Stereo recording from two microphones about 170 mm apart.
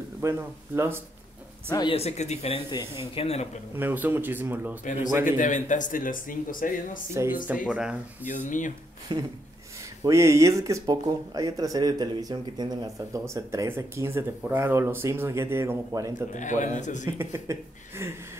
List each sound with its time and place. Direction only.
0.2 s speech: 15° right (ahead or behind)
1.7 s speech: 25° left (ahead or behind)
2.0 s speech: 40° left (ahead or behind)
2.7 s speech: 30° left (ahead or behind)
3.7 s speech: 10° right (ahead or behind)
5.2 s speech: 50° left (ahead or behind)
7.6 s speech: 5° right (ahead or behind)
8.3 s speech: 50° left (ahead or behind)
9.1 s speech: 30° right (ahead or behind)
10.0 s speech: 15° right (ahead or behind)
16.3 s speech: 45° left (ahead or behind)
17.2 s speech: 15° right (ahead or behind)